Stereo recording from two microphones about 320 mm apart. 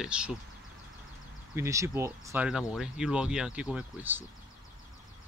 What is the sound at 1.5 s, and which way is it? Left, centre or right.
Speech, centre.